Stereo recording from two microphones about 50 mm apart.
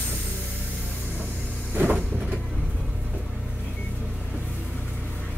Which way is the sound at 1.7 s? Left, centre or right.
Right.